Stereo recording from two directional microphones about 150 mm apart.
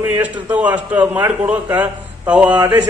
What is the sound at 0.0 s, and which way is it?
A man's voice, 10° right (ahead or behind).